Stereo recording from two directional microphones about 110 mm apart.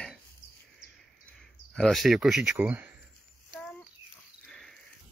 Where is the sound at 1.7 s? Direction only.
Centre (ahead or behind).